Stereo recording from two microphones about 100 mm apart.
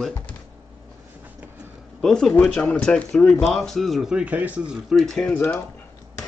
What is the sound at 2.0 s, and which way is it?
A man's voice, 5° left (ahead or behind).